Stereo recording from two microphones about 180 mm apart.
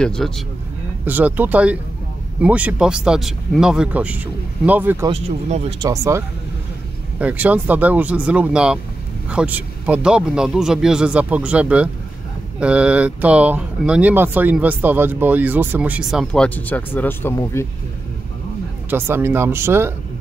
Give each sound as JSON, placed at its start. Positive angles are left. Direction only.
{"t": 0.0, "sound": "a man's voice", "side_deg": 5}
{"t": 1.0, "sound": "a man's voice", "side_deg": -10}
{"t": 5.1, "sound": "speech", "side_deg": -35}
{"t": 5.9, "sound": "a man's voice", "side_deg": -15}
{"t": 18.9, "sound": "speech", "side_deg": -10}